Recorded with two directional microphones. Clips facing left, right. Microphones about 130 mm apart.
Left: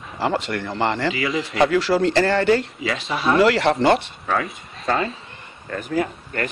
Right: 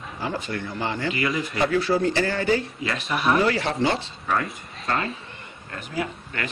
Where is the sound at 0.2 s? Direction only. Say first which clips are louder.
Left 6 dB; 75° left (ahead or behind).